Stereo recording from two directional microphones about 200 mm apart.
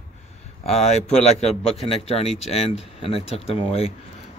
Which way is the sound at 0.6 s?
30° left (ahead or behind).